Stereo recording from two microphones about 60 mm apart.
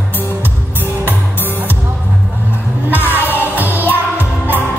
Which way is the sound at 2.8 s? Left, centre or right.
Right.